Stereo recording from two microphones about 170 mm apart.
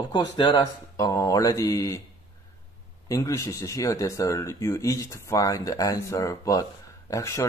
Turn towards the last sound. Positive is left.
turn(degrees=15)  # may be behind; listen again after turning